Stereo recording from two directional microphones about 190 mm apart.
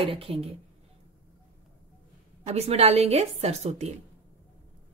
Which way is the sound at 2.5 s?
35° right (ahead or behind).